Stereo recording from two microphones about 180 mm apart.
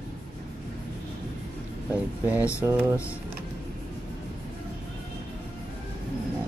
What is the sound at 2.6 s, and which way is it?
Mantra, 10° right (ahead or behind).